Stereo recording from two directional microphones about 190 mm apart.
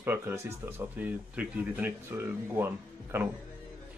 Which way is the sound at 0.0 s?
10° right (ahead or behind).